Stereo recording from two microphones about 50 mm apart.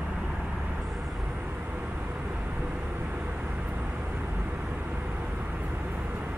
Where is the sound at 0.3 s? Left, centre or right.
Centre.